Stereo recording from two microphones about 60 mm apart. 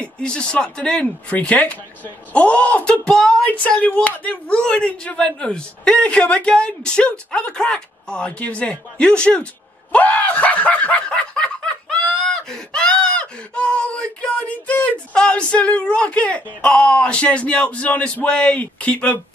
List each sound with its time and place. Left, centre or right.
0.0 s speech: centre
3.4 s speech: left
9.9 s snicker: left
15.1 s speech: centre